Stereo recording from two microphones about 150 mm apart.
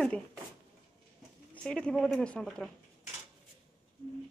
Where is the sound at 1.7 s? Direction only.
5° left (ahead or behind).